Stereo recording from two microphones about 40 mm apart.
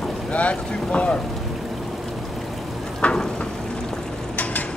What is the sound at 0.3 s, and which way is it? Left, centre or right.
Speech, left.